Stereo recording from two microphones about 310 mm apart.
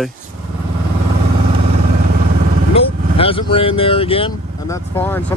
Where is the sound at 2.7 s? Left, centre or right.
Centre.